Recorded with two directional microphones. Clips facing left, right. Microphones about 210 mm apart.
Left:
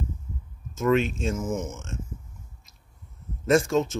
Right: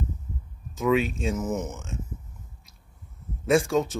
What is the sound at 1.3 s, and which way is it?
Speech, 20° right (ahead or behind).